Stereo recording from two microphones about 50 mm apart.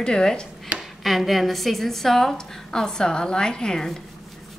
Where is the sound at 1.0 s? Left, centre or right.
Centre.